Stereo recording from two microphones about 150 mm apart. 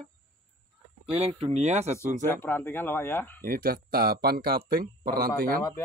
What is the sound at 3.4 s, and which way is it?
Speech, 75° right (ahead or behind).